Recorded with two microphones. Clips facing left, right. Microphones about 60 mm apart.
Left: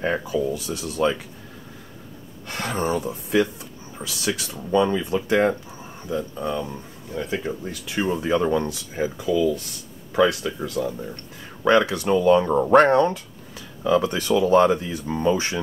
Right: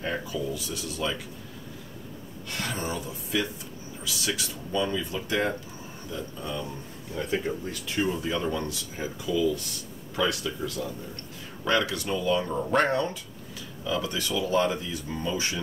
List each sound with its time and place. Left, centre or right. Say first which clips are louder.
0.0 s speech: left 7 dB; left
2.4 s speech: left 7 dB; left
8.0 s speech: left 6 dB; left